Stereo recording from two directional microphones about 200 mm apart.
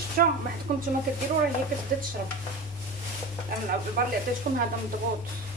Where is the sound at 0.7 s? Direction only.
40° right (ahead or behind).